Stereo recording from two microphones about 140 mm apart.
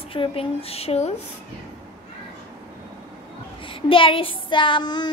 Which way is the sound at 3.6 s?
40° left (ahead or behind).